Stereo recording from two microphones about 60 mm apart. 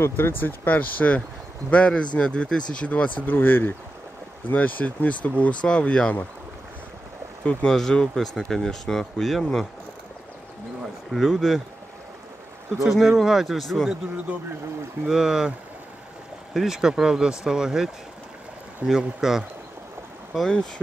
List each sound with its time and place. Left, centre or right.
0.0 s speech: left; by 6.2 s centre
7.4 s speech: centre
11.1 s speech: centre
12.7 s speech: centre
15.0 s speech: centre
16.5 s speech: centre
18.8 s speech: right
19.2 s speech: centre
20.3 s speech: centre